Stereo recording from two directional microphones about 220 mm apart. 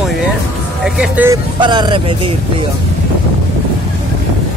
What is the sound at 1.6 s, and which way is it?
Speech, 20° right (ahead or behind).